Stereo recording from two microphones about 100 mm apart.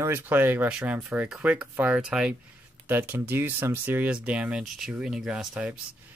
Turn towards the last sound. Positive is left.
turn(degrees=-10)  # may be behind; listen again after turning